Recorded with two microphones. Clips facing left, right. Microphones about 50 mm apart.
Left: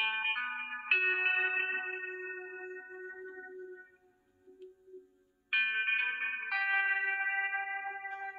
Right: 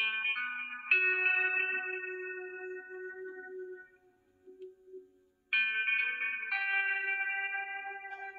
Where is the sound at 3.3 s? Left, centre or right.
Centre.